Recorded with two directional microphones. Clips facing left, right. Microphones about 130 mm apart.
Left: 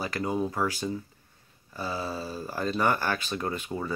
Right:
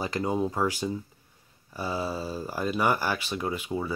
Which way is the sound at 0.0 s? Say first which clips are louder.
Right 2 dB; 20° right (ahead or behind).